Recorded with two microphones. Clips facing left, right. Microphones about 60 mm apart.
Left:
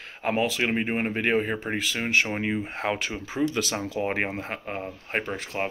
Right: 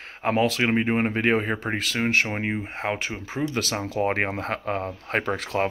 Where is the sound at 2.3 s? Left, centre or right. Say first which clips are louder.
Even; right.